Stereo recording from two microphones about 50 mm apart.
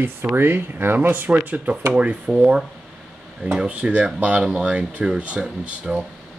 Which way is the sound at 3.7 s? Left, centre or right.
Right.